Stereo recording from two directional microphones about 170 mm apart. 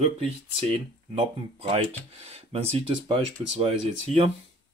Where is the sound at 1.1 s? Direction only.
35° right (ahead or behind).